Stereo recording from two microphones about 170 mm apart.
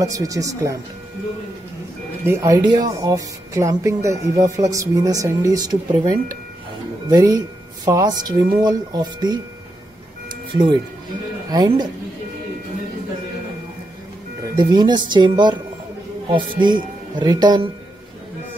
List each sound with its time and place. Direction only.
0.0 s speech: 20° right (ahead or behind)
2.2 s a woman's voice: 15° right (ahead or behind)
10.5 s speech: 30° right (ahead or behind)
14.6 s speech: 25° right (ahead or behind)